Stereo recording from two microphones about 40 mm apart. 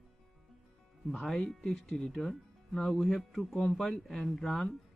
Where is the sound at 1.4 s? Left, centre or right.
Centre.